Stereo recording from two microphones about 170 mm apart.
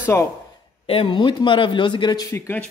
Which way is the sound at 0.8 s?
30° left (ahead or behind).